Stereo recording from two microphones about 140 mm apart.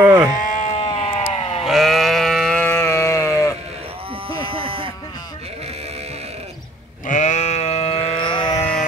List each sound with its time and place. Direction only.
0.0 s speech: 20° right (ahead or behind)
0.7 s sheep: 45° left (ahead or behind)
1.7 s sheep: centre (ahead or behind); by 3.5 s 20° left (ahead or behind)
4.3 s sheep: 40° right (ahead or behind)
7.1 s sheep: 60° left (ahead or behind); by 8.5 s 35° left (ahead or behind)